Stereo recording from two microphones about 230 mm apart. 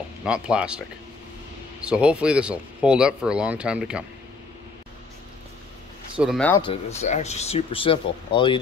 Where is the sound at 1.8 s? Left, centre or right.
Centre.